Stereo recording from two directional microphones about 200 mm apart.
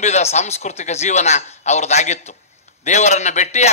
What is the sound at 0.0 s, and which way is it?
A man's voice, 35° left (ahead or behind).